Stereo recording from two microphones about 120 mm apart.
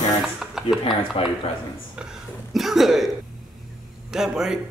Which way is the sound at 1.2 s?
50° left (ahead or behind).